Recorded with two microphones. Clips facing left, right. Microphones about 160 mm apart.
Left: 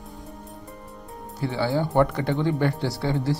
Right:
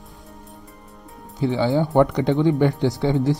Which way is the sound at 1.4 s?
20° right (ahead or behind).